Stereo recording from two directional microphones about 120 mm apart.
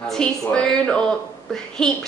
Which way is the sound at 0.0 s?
5° left (ahead or behind).